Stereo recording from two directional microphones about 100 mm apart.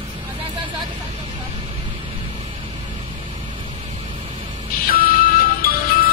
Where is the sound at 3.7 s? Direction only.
90° right.